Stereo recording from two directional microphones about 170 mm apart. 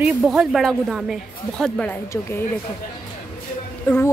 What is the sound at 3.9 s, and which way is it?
Speech, 10° left (ahead or behind).